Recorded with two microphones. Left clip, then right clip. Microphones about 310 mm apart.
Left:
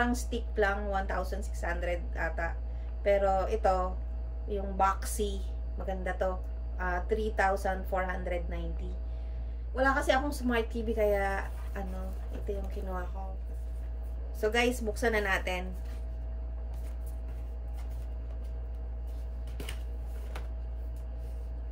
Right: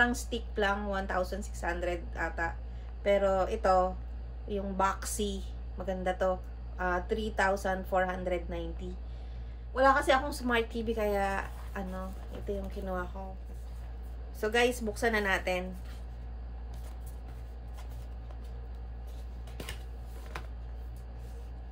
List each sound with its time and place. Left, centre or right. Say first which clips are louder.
0.0 s a woman's voice: right 3 dB; centre
9.8 s a woman's voice: right 2 dB; centre
14.4 s a woman's voice: even; centre